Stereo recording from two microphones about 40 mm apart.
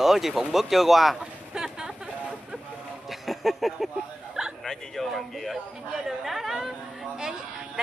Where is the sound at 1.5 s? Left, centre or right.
Centre.